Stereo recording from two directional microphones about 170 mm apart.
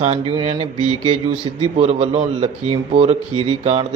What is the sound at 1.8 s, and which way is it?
Speech, 35° right (ahead or behind).